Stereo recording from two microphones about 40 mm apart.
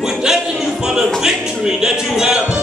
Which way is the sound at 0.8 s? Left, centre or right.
Centre.